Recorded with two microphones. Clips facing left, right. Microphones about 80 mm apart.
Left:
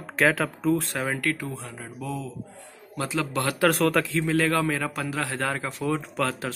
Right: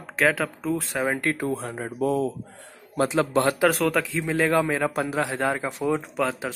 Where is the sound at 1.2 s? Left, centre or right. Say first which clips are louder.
Right 3 dB; right.